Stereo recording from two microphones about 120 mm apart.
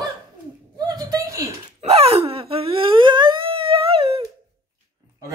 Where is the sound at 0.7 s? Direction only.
35° right (ahead or behind).